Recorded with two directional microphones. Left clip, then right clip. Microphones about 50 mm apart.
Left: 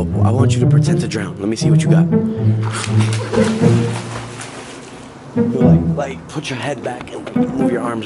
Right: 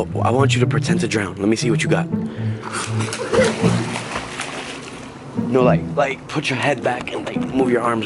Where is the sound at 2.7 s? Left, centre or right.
Centre.